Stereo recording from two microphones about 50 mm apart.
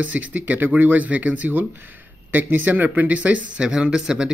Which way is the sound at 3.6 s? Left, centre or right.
Centre.